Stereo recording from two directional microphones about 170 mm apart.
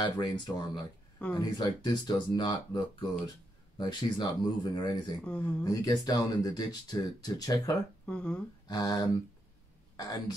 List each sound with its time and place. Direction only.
0.0 s speech: 25° left (ahead or behind)
5.2 s speech: 10° left (ahead or behind)
5.6 s speech: 20° left (ahead or behind)
8.1 s speech: 5° left (ahead or behind)
8.6 s speech: 20° left (ahead or behind)